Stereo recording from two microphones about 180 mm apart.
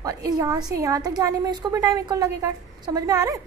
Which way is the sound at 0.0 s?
20° right (ahead or behind).